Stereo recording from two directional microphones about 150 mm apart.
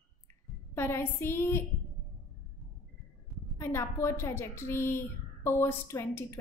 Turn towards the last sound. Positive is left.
turn(degrees=15)  # may be behind; listen again after turning